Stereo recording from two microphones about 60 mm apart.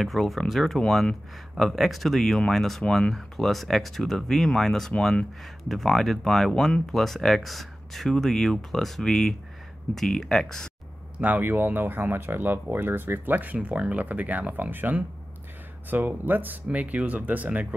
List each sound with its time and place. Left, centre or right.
0.0 s speech: centre
4.9 s speech: centre
5.6 s speech: centre
11.1 s speech: right